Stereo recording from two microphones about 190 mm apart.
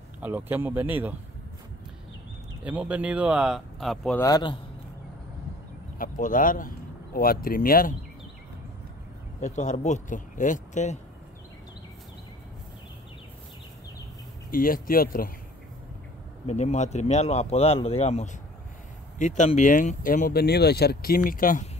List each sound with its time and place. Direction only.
0.2 s speech: 10° right (ahead or behind)
2.6 s speech: 5° right (ahead or behind)
4.2 s a man's voice: 20° left (ahead or behind)
5.9 s speech: 45° left (ahead or behind)
9.4 s speech: 40° left (ahead or behind)
14.5 s speech: 50° left (ahead or behind)
16.4 s speech: 35° left (ahead or behind)